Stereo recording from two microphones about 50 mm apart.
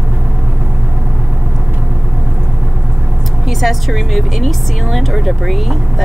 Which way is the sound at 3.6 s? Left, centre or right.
Centre.